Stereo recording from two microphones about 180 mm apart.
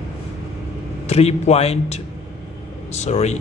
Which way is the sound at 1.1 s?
35° left (ahead or behind).